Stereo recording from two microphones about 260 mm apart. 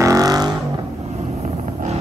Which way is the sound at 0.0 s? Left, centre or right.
Centre.